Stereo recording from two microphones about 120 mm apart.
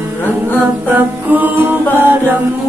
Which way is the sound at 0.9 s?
15° right (ahead or behind).